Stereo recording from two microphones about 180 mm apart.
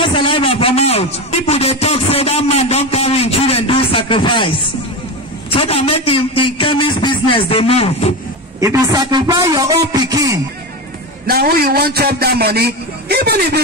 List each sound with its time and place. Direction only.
0.1 s a man's voice: 30° left (ahead or behind)
5.5 s a man's voice: 30° left (ahead or behind)
8.5 s a man's voice: 15° right (ahead or behind)
11.2 s a man's voice: 55° right (ahead or behind)